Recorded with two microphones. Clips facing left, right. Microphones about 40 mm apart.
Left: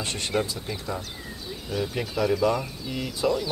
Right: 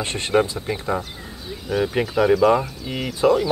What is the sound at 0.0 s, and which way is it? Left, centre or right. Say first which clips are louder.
Speech: right 7 dB; right.